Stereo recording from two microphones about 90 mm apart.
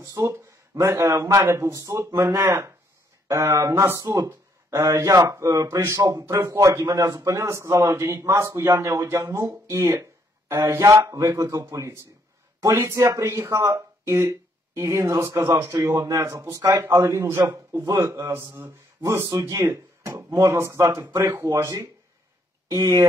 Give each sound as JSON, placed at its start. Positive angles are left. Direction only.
{"t": 0.0, "sound": "speech", "side_deg": -35}